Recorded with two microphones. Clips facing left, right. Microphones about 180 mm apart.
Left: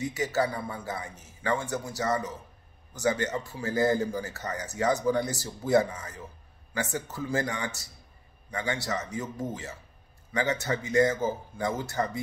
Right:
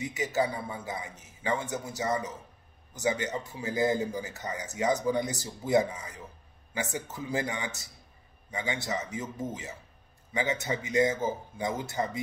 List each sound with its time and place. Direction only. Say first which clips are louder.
0.0 s a man's voice: left 1 dB; 20° right (ahead or behind)